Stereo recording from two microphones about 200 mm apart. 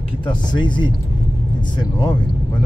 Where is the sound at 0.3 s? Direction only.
25° left (ahead or behind).